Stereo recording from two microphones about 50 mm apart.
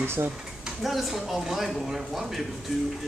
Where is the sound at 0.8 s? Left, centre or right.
Centre.